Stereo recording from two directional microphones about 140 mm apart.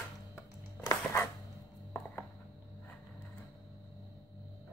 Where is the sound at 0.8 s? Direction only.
20° left (ahead or behind).